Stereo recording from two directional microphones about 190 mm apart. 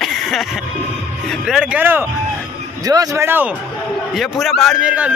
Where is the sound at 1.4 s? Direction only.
5° right (ahead or behind).